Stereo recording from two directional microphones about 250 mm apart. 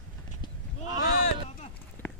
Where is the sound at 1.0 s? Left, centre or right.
Left.